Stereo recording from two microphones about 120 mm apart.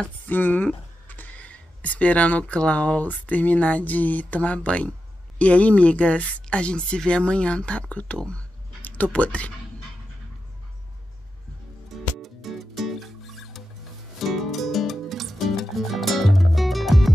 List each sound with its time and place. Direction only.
0.3 s speech: 15° left (ahead or behind)
12.2 s music: centre (ahead or behind)